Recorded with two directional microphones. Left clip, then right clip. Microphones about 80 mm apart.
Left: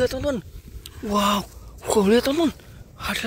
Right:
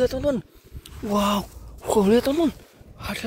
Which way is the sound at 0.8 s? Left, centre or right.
Right.